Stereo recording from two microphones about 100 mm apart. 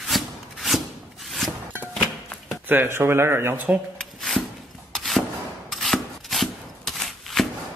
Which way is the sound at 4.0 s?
5° left (ahead or behind).